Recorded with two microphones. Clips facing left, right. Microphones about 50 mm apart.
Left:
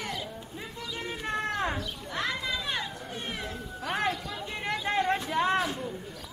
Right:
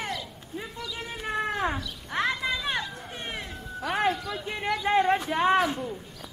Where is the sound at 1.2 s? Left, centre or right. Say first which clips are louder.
Right 3 dB; centre.